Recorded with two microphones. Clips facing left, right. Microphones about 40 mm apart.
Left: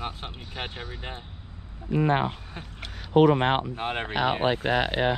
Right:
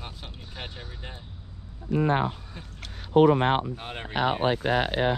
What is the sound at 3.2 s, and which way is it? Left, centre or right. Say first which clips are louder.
Speech: even; left.